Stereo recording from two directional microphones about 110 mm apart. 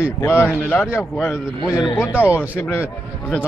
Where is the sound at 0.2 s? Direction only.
20° left (ahead or behind).